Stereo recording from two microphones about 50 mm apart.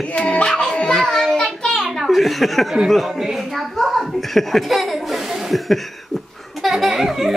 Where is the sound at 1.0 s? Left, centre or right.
Centre.